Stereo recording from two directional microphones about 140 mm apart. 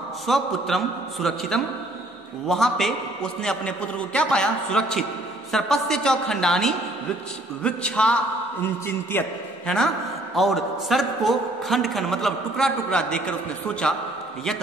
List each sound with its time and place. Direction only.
0.3 s a man's voice: centre (ahead or behind)
10.3 s a man's voice: centre (ahead or behind)